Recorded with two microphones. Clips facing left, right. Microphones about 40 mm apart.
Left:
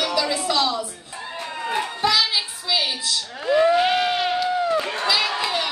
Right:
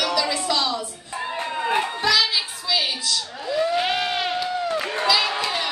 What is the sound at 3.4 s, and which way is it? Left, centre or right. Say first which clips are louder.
Speech: left 6 dB; left.